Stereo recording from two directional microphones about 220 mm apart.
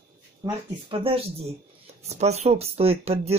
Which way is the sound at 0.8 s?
25° right (ahead or behind).